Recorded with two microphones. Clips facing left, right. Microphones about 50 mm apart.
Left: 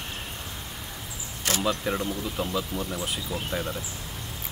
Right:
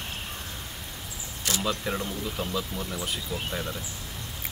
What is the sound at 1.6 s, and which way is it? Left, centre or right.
Speech, centre.